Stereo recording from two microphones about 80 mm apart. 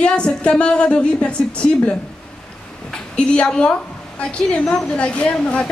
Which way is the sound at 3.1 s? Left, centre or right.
Centre.